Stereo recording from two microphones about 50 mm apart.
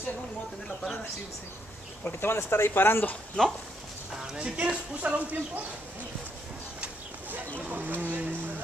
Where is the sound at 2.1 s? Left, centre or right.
Left.